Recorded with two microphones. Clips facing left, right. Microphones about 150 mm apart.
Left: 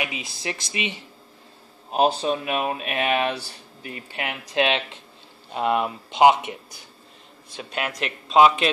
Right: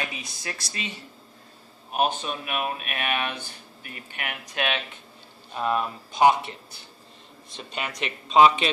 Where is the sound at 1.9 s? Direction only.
30° left (ahead or behind).